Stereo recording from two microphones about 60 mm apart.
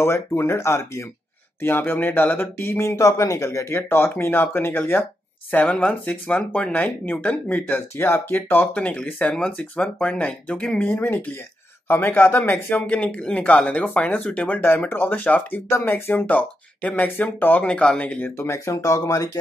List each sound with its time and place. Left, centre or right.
0.0 s speech: left
1.6 s speech: left
3.1 s speech: left
5.5 s speech: left
8.7 s speech: left
10.9 s speech: left
12.7 s speech: left
14.9 s speech: left
16.2 s speech: left
17.6 s speech: centre
18.4 s speech: left